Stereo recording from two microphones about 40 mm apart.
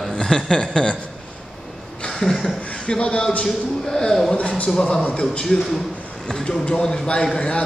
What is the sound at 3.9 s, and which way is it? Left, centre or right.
A man's voice, centre.